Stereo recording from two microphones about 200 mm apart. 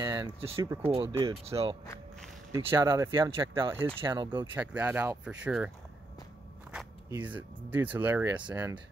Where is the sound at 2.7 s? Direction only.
15° right (ahead or behind).